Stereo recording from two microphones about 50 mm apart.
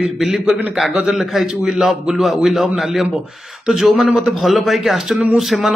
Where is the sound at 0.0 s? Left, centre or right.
Centre.